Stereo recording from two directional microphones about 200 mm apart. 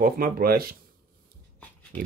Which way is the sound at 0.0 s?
45° right (ahead or behind).